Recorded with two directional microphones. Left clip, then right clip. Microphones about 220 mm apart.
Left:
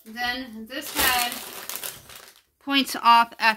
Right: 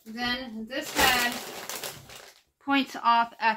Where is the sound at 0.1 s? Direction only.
35° left (ahead or behind).